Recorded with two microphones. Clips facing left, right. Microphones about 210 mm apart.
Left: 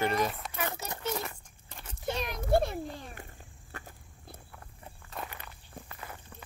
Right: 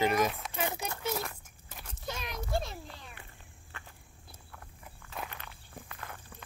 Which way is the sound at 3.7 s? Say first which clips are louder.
Left 5 dB; 40° left (ahead or behind).